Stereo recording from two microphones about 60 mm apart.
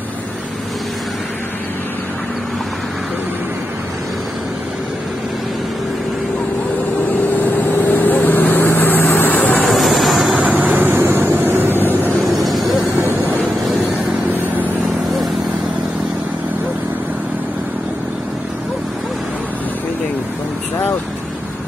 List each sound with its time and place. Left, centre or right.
7.3 s vehicle: left
9.9 s vehicle: centre
10.3 s vehicle: right
12.3 s vehicle: centre